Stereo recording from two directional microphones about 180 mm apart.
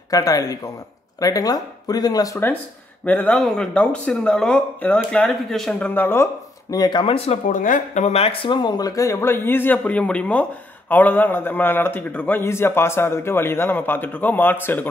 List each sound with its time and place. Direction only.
0.1 s speech: 20° left (ahead or behind)
6.7 s a man's voice: 25° left (ahead or behind)